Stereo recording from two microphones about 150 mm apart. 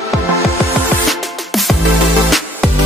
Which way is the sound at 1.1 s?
Centre (ahead or behind).